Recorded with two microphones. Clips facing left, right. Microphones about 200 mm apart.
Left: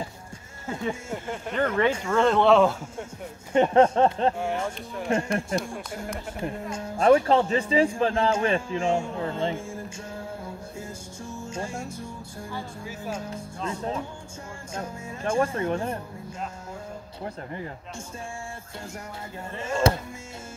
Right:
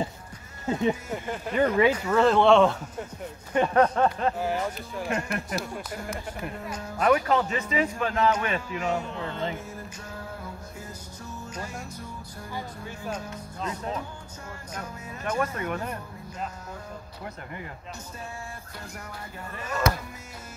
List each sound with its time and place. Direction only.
0.7 s speech: 20° right (ahead or behind)
1.1 s speech: 5° right (ahead or behind)
3.5 s speech: 25° left (ahead or behind)
4.4 s speech: 5° right (ahead or behind)
5.1 s speech: 25° left (ahead or behind)
5.9 s speech: 5° right (ahead or behind)
6.4 s speech: 25° left (ahead or behind)
11.2 s music: 25° left (ahead or behind)
13.7 s speech: 30° left (ahead or behind)
17.2 s speech: 30° left (ahead or behind)
19.5 s speech: 25° left (ahead or behind)